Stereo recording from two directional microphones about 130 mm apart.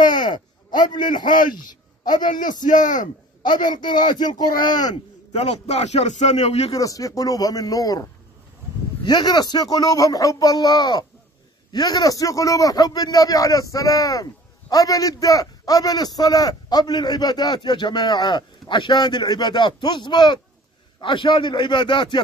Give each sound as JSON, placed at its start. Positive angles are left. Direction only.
{"t": 0.0, "sound": "a sound", "side_deg": 35}
{"t": 0.7, "sound": "a man's voice", "side_deg": 35}
{"t": 1.6, "sound": "a sound", "side_deg": 35}
{"t": 2.6, "sound": "speech", "side_deg": 80}
{"t": 3.7, "sound": "a man's voice", "side_deg": 35}
{"t": 5.3, "sound": "a man's voice", "side_deg": 55}
{"t": 6.8, "sound": "a man's voice", "side_deg": 25}